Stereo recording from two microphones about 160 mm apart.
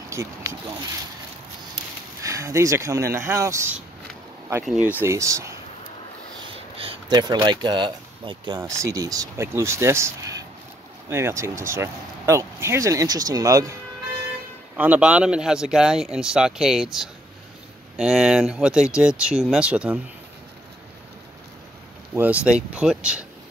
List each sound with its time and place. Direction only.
0.1 s speech: 20° right (ahead or behind)
2.2 s speech: 20° right (ahead or behind)
4.6 s speech: 10° right (ahead or behind)
5.0 s speech: 20° right (ahead or behind)
6.8 s speech: 30° right (ahead or behind)
14.8 s speech: 10° right (ahead or behind)
22.1 s speech: 10° right (ahead or behind)